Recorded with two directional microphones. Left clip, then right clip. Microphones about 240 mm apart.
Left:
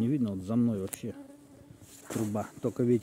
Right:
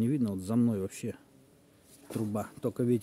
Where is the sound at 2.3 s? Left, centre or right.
Centre.